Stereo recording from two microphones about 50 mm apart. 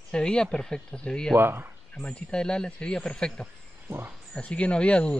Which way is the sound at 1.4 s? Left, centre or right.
Right.